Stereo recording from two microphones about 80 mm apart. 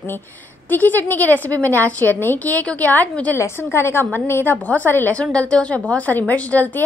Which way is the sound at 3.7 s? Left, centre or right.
Left.